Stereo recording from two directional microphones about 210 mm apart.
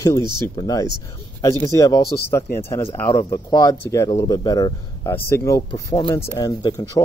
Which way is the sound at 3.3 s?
15° left (ahead or behind).